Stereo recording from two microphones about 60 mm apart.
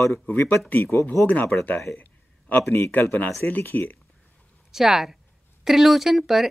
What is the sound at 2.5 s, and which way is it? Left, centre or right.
Speech, left.